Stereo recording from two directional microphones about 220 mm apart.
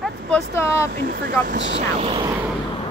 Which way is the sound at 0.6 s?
10° left (ahead or behind).